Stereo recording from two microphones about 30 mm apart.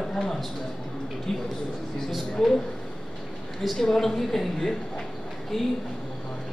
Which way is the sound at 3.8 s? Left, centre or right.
Centre.